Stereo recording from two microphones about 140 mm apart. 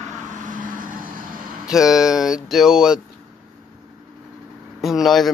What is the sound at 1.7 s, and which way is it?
Speech, 5° right (ahead or behind).